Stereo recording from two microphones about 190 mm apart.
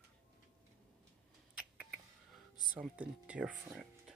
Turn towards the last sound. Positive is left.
turn(degrees=-5)  # may be behind; listen again after turning